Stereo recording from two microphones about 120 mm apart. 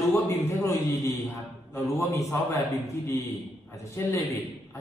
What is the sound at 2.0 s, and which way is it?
Speech, 25° left (ahead or behind).